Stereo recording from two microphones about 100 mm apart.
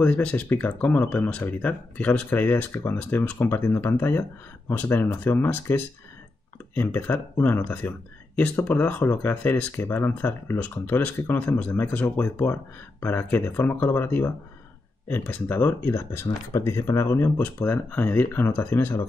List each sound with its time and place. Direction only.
0.0 s speech: 15° left (ahead or behind)